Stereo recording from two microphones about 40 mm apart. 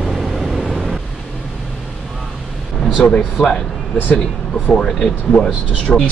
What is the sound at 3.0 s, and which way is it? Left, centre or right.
Speech, left.